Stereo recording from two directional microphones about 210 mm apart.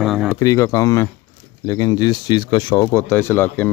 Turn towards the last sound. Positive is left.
turn(degrees=10)  # may be behind; listen again after turning